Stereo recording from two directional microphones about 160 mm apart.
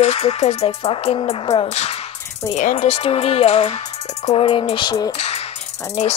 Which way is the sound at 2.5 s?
50° left (ahead or behind).